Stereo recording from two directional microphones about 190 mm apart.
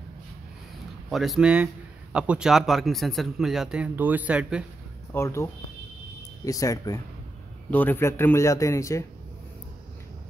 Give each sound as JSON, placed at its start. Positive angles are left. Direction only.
{"t": 1.1, "sound": "a man's voice", "side_deg": 0}
{"t": 5.1, "sound": "a man's voice", "side_deg": 15}